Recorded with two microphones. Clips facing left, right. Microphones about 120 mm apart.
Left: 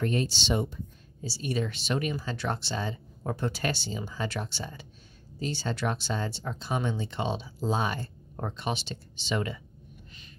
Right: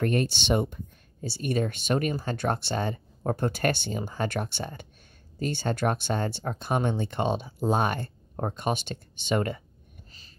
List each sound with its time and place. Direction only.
0.0 s speech: 55° right (ahead or behind)